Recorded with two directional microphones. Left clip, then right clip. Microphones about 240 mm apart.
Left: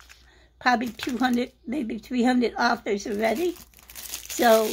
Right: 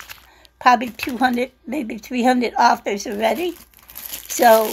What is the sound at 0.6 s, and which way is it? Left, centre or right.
A woman's voice, centre.